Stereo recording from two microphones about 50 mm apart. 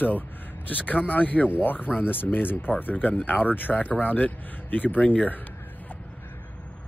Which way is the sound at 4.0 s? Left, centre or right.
Left.